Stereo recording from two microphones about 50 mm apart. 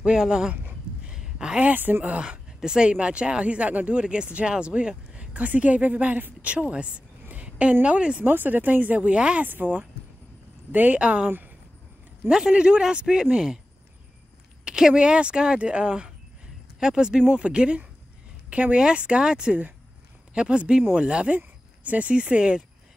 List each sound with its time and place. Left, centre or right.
0.0 s a man's voice: centre
1.1 s a sound: centre
1.6 s speech: right
2.6 s speech: centre
7.4 s a sound: right
7.8 s speech: right
8.3 s speech: right
9.4 s speech: right
11.0 s speech: right
11.2 s speech: right
12.3 s a man's voice: centre
14.6 s a man's voice: centre